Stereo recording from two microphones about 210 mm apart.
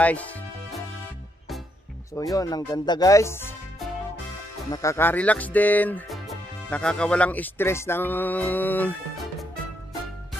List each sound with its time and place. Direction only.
0.0 s music: 5° left (ahead or behind)
2.1 s speech: 15° left (ahead or behind)
4.6 s speech: 15° left (ahead or behind)